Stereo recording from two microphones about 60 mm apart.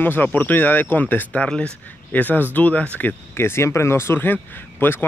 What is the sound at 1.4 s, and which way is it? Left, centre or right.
Speech, centre.